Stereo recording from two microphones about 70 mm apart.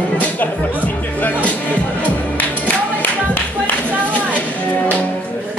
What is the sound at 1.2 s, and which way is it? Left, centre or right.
Music, left.